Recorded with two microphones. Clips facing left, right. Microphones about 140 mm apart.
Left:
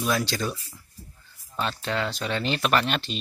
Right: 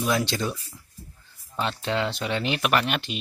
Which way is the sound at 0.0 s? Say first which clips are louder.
Right 1 dB; 20° right (ahead or behind).